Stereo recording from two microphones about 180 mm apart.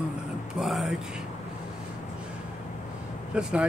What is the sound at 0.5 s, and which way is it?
Speech, centre (ahead or behind).